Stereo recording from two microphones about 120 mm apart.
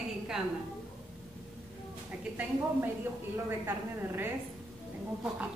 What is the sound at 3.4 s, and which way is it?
A woman's voice, 20° right (ahead or behind).